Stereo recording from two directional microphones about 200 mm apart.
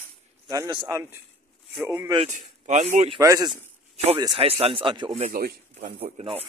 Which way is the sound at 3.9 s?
30° right (ahead or behind).